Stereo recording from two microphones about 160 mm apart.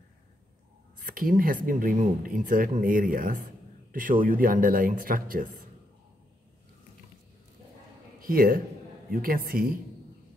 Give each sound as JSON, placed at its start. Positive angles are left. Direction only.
{"t": 0.9, "sound": "speech", "side_deg": -60}
{"t": 8.2, "sound": "a man's voice", "side_deg": -65}